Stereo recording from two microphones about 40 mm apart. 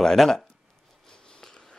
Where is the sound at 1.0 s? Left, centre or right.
Centre.